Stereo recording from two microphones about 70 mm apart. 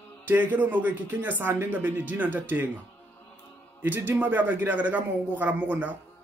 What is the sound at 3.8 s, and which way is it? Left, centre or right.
Speech, right.